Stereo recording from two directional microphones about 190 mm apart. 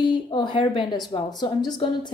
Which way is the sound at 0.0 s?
25° left (ahead or behind).